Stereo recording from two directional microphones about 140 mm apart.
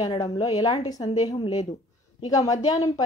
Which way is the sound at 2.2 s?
25° left (ahead or behind).